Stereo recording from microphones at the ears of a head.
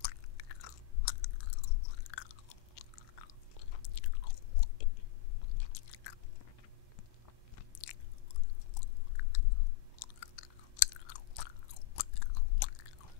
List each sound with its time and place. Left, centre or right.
0.0 s chewing: left
8.7 s chewing: left